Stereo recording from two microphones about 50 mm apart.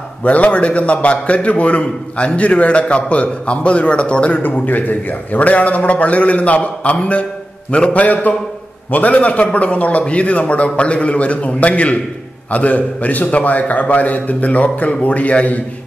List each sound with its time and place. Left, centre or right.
0.2 s a man's voice: left
4.4 s a man's voice: left